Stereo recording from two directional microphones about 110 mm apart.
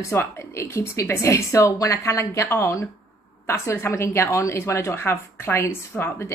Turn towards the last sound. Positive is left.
turn(degrees=25)  # may be behind; listen again after turning